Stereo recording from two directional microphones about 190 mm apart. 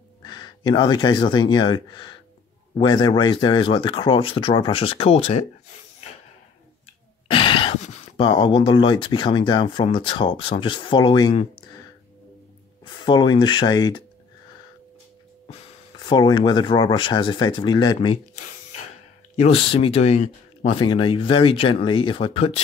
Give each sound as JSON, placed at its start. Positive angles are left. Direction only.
{"t": 0.2, "sound": "speech", "side_deg": 25}
{"t": 7.2, "sound": "speech", "side_deg": 25}
{"t": 12.8, "sound": "speech", "side_deg": 25}
{"t": 16.0, "sound": "speech", "side_deg": 20}
{"t": 19.3, "sound": "speech", "side_deg": 30}